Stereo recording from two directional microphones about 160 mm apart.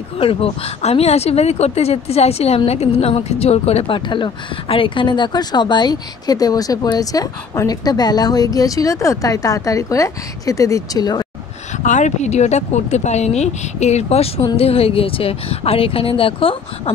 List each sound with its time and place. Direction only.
0.2 s speech: 35° left (ahead or behind)
11.8 s speech: 50° left (ahead or behind)